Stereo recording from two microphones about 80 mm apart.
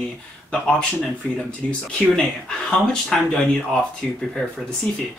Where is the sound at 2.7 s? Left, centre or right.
Centre.